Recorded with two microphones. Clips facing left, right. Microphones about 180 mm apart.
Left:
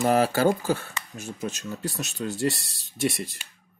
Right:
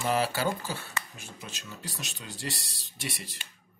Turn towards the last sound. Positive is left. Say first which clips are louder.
# left 12 dB
turn(degrees=45)  # may be behind; listen again after turning